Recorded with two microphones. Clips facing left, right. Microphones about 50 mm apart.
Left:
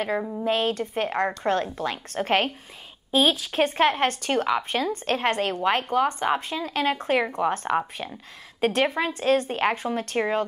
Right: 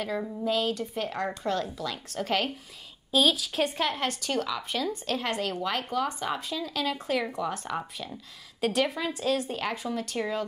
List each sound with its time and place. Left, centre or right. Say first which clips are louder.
0.4 s speech: left 2 dB; left
3.1 s speech: left 3 dB; left